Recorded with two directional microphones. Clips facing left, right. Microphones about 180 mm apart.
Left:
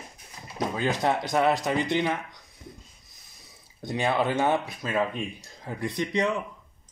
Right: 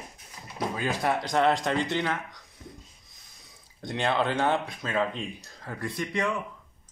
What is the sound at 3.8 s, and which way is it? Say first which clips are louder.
Speech: left 1 dB; 5° left (ahead or behind).